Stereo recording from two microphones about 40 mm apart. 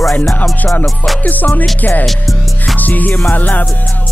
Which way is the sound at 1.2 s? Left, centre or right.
Left.